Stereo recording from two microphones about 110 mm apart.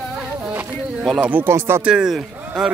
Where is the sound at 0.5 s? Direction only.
10° right (ahead or behind).